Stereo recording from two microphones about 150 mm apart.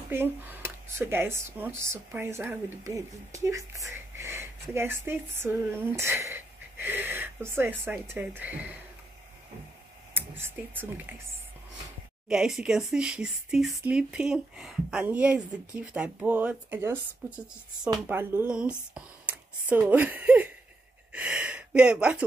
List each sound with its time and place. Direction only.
0.1 s speech: 15° right (ahead or behind)
10.1 s speech: 15° right (ahead or behind)
12.3 s speech: 5° right (ahead or behind)
18.0 s speech: 15° right (ahead or behind)